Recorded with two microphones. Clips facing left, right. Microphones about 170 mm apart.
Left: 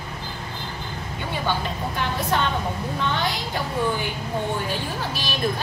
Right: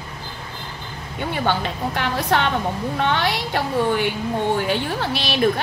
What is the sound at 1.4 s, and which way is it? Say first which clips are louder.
A woman's voice: right 3 dB; 70° right (ahead or behind).